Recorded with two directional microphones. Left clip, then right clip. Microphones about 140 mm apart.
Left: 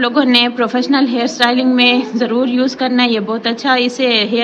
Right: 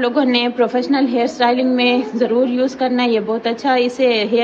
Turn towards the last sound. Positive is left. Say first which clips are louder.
# left 1 dB
turn(degrees=5)  # may be behind; listen again after turning